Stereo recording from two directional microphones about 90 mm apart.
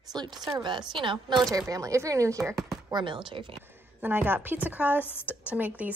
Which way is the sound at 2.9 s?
60° right (ahead or behind).